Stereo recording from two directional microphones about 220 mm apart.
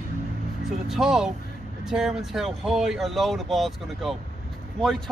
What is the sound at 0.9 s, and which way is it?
Speech, centre (ahead or behind).